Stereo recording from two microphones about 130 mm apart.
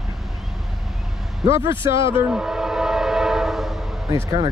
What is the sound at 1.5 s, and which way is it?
Speech, 20° right (ahead or behind).